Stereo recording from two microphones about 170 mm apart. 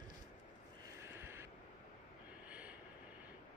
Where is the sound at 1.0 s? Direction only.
15° right (ahead or behind).